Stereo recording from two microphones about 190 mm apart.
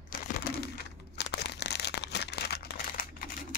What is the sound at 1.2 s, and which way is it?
Crumpling, 65° left (ahead or behind).